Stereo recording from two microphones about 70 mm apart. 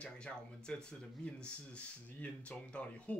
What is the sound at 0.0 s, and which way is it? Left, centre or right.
Speech, centre.